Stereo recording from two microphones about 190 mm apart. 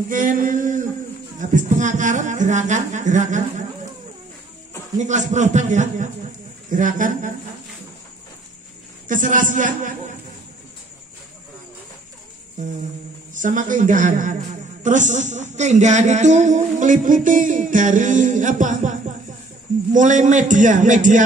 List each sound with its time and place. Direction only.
0.1 s a sound: 45° right (ahead or behind)
1.4 s speech: 40° right (ahead or behind)
4.9 s a man's voice: 40° right (ahead or behind)
9.0 s a man's voice: 45° right (ahead or behind)
13.3 s a man's voice: 40° right (ahead or behind)